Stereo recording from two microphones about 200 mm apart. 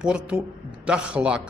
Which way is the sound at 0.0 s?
5° right (ahead or behind).